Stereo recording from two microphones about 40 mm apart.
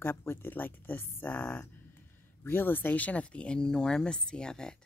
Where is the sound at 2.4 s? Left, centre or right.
Left.